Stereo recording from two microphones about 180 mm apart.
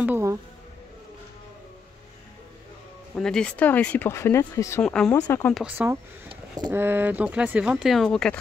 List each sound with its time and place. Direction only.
0.0 s speech: 15° right (ahead or behind)
3.2 s speech: 5° left (ahead or behind)
4.8 s speech: 5° left (ahead or behind)
5.1 s speech: 15° left (ahead or behind)
5.5 s speech: 5° right (ahead or behind)